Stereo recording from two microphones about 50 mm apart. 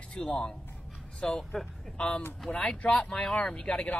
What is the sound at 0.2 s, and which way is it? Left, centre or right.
Speech, centre.